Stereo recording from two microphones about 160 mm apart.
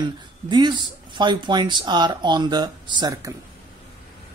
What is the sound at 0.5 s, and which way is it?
Speech, 30° right (ahead or behind).